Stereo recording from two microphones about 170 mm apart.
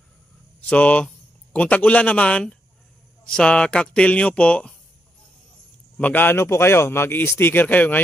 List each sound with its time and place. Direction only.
0.6 s speech: 10° left (ahead or behind)
5.9 s speech: 10° left (ahead or behind)